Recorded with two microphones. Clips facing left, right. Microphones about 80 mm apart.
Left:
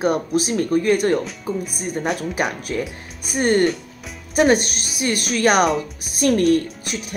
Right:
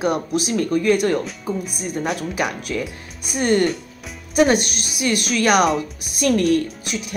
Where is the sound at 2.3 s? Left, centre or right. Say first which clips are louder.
Left 1 dB; left.